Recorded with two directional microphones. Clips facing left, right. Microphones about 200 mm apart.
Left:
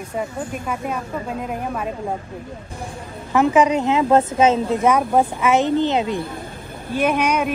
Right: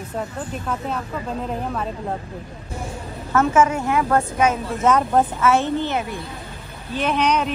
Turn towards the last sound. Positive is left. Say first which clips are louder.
# left 2 dB
turn(degrees=10)  # may be behind; listen again after turning